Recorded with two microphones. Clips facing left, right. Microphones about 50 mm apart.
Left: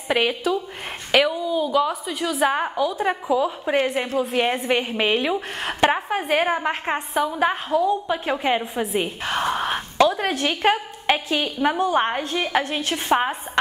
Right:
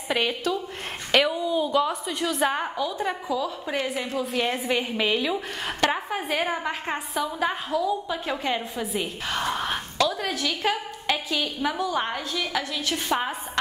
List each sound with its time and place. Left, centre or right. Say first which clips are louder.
0.1 s a woman's voice: left 4 dB; centre
2.5 s a woman's voice: left 5 dB; centre
3.8 s a woman's voice: left 5 dB; left
5.6 s a woman's voice: left 6 dB; centre
9.3 s a sound: left 4 dB; centre
9.9 s a woman's voice: left 7 dB; left